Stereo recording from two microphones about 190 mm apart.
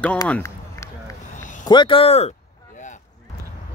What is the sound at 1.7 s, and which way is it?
Speech, 25° left (ahead or behind).